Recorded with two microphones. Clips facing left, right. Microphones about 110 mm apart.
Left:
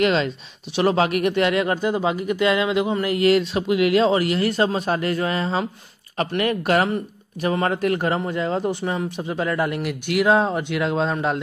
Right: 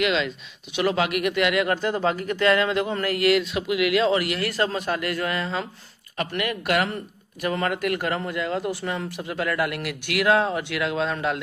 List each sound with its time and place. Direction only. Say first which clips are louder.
0.0 s speech: left 4 dB; 40° left (ahead or behind); by 10.8 s 20° left (ahead or behind)
10.8 s speech: left 3 dB; 30° left (ahead or behind)